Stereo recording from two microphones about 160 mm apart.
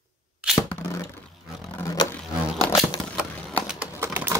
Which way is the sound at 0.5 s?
20° left (ahead or behind).